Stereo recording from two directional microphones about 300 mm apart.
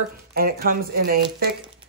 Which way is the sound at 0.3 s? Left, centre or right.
Right.